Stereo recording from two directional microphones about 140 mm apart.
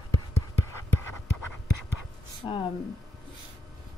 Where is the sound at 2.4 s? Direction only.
35° left (ahead or behind).